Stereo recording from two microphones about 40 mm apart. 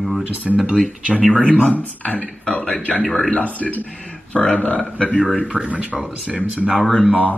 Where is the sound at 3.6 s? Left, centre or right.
Left.